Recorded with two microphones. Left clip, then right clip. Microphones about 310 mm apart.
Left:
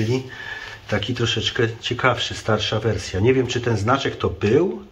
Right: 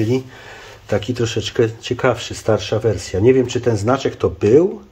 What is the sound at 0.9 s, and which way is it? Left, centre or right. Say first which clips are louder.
Speech: right 3 dB; right.